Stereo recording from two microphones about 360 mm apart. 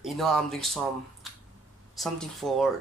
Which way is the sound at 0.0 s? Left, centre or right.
Centre.